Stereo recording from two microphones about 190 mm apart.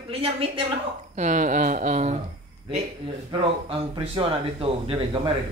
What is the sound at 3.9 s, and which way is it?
Speech, 30° right (ahead or behind).